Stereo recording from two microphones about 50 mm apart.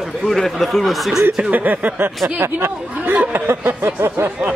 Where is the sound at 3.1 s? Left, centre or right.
Right.